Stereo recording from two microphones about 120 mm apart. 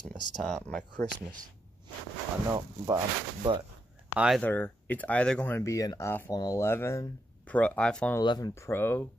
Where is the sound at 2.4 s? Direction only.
35° right (ahead or behind).